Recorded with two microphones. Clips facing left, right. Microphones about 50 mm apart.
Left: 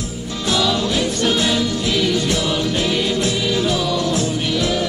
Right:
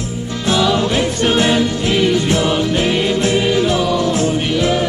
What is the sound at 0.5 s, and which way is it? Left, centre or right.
Music, right.